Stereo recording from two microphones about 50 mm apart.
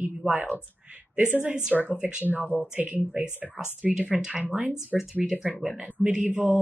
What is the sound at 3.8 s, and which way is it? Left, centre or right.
Speech, centre.